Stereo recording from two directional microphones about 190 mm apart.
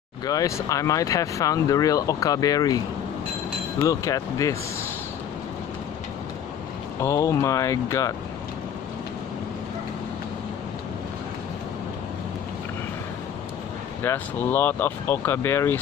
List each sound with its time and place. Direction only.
0.2 s speech: 20° left (ahead or behind)
3.8 s speech: 20° left (ahead or behind)
7.0 s speech: 15° left (ahead or behind)
14.0 s speech: 10° left (ahead or behind)